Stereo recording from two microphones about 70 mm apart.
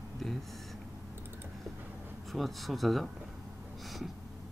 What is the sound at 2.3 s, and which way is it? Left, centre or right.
Speech, centre.